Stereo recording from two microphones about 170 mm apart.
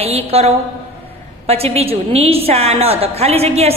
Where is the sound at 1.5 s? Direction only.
35° right (ahead or behind).